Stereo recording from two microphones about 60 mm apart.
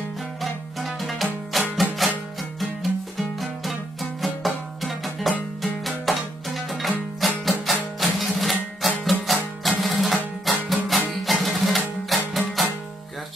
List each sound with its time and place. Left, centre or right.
0.4 s music: centre